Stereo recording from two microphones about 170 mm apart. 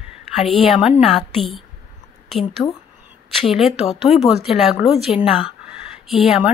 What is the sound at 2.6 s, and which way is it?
Speech, 15° left (ahead or behind).